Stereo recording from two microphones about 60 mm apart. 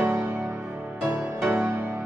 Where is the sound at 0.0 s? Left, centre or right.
Right.